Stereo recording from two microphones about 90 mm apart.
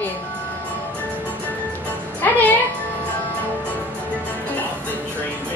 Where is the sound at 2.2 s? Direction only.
20° left (ahead or behind).